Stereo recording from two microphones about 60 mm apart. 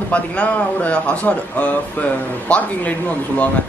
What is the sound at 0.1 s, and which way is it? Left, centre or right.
Speech, left.